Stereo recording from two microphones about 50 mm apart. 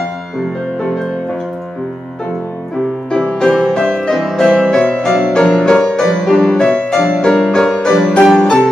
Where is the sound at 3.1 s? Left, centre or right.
Centre.